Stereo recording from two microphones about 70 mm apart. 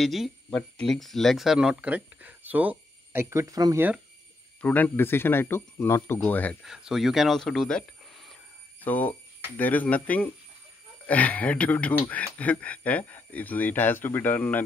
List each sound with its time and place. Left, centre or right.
0.0 s speech: centre
0.5 s speech: centre; by 2.8 s right
3.1 s a sound: right
3.3 s speech: right
4.6 s speech: left
6.2 s speech: left
6.6 s speech: centre
8.8 s speech: left